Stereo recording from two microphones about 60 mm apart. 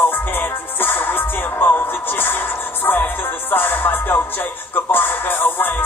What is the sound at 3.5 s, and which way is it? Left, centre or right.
Music, left.